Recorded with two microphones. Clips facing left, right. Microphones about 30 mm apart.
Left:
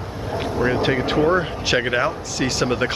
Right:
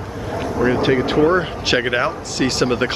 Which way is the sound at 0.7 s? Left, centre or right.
Centre.